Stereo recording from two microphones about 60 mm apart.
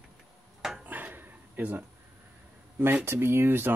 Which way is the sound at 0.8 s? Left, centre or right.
Right.